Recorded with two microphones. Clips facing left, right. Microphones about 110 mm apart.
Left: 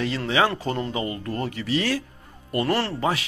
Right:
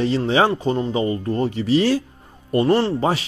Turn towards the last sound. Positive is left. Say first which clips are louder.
# right 7 dB
turn(degrees=-20)  # may be behind; listen again after turning